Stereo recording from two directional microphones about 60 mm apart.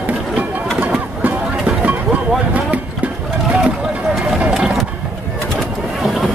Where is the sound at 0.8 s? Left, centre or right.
Right.